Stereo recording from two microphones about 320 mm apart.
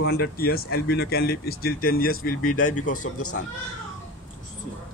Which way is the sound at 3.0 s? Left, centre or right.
Left.